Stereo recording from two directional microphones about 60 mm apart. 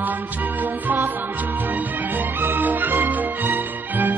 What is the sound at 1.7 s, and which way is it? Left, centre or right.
Music, right.